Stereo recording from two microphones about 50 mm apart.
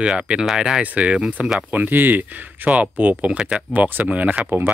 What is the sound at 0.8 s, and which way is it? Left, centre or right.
Speech, right.